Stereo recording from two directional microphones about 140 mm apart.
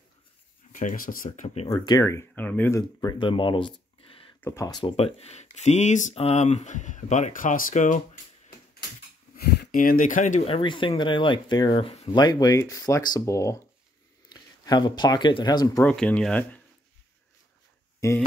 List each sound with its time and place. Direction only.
0.7 s speech: 70° left (ahead or behind); by 1.7 s 55° left (ahead or behind)
1.7 s speech: 25° left (ahead or behind)
3.0 s speech: 30° left (ahead or behind)
4.4 s speech: 20° left (ahead or behind)
4.9 s speech: 45° left (ahead or behind); by 8.0 s 65° left (ahead or behind)
9.7 s speech: 85° left; by 10.5 s 65° left (ahead or behind)
10.5 s speech: 35° left (ahead or behind)
12.2 s speech: 30° left (ahead or behind)
15.8 s speech: 10° left (ahead or behind)